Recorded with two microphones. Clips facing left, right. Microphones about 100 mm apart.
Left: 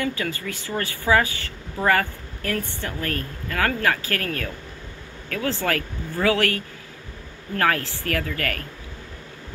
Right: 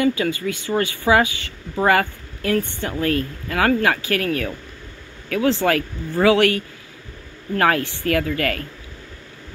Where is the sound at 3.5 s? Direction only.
20° right (ahead or behind).